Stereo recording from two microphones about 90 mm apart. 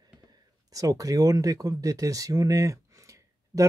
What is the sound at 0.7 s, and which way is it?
Speech, 40° right (ahead or behind).